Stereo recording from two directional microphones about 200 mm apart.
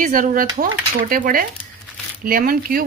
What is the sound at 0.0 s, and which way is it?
Speech, 40° right (ahead or behind).